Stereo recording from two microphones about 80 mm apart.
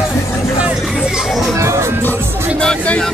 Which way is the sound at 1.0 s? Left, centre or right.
Centre.